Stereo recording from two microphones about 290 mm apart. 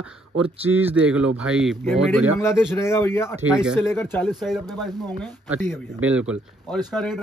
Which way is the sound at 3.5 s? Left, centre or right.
Centre.